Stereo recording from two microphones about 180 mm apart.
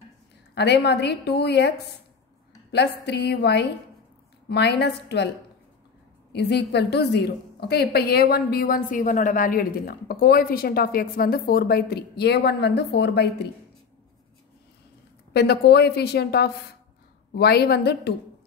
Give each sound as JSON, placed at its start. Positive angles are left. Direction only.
{"t": 0.6, "sound": "a woman's voice", "side_deg": 70}
{"t": 2.7, "sound": "a woman's voice", "side_deg": 65}
{"t": 6.3, "sound": "a woman's voice", "side_deg": 70}
{"t": 15.3, "sound": "a woman's voice", "side_deg": 65}